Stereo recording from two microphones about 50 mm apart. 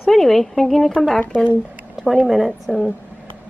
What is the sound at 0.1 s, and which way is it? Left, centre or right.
Speech, centre.